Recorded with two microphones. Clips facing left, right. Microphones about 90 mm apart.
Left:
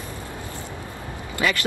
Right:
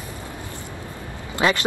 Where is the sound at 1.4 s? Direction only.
20° right (ahead or behind).